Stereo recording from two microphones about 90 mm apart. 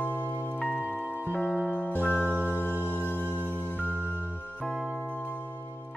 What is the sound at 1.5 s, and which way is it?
Music, 10° right (ahead or behind).